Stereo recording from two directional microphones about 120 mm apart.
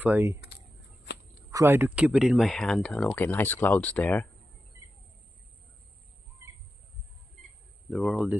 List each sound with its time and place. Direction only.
0.0 s speech: 15° right (ahead or behind)
1.5 s speech: 25° right (ahead or behind)
2.0 s speech: 10° right (ahead or behind); by 4.3 s 15° left (ahead or behind)
7.9 s speech: centre (ahead or behind)